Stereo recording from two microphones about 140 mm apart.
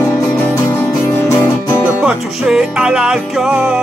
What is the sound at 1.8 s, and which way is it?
Music, 5° right (ahead or behind).